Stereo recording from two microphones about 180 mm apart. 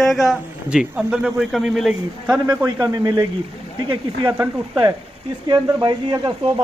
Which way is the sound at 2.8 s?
20° right (ahead or behind).